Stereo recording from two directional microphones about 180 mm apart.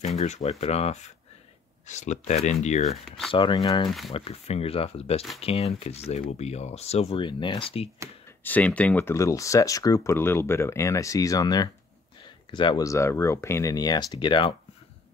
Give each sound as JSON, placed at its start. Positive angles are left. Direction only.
{"t": 0.0, "sound": "speech", "side_deg": 40}
{"t": 3.3, "sound": "speech", "side_deg": 25}
{"t": 4.1, "sound": "speech", "side_deg": 35}
{"t": 8.5, "sound": "speech", "side_deg": 10}